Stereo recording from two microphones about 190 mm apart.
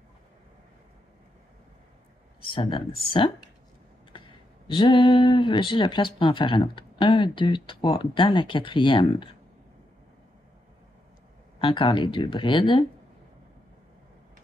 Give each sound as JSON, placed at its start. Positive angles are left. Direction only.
{"t": 2.5, "sound": "speech", "side_deg": 25}
{"t": 4.6, "sound": "speech", "side_deg": 25}
{"t": 11.6, "sound": "speech", "side_deg": 25}